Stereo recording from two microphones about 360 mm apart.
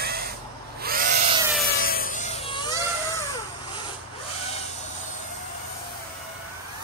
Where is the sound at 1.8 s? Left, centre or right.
Left.